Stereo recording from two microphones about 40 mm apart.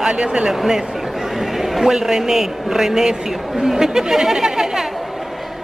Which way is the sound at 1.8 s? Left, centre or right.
Centre.